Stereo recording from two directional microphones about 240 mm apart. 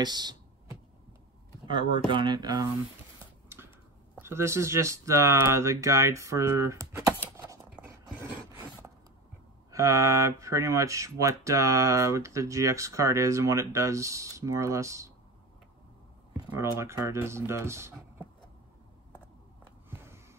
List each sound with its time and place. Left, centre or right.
0.0 s a sound: centre
1.7 s speech: right
4.2 s speech: centre
7.3 s dog: centre
9.7 s speech: centre
16.3 s speech: centre
19.9 s a sound: centre